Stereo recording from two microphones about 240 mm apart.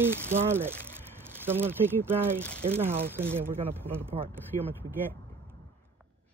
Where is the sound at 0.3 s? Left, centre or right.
Centre.